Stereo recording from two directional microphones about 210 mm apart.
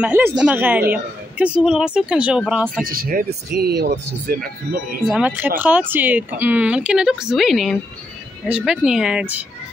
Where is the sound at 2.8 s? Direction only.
45° right (ahead or behind).